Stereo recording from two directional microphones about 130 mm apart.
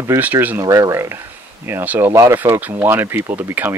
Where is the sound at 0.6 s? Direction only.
25° right (ahead or behind).